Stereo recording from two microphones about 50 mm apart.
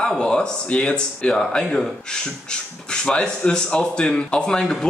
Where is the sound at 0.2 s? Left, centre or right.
Centre.